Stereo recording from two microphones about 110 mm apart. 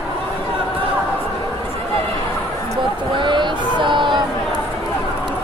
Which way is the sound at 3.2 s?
45° right (ahead or behind).